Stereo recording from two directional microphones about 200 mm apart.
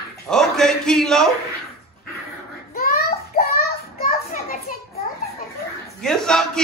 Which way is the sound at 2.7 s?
45° left (ahead or behind).